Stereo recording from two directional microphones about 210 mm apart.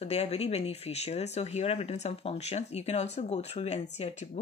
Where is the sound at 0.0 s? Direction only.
30° left (ahead or behind).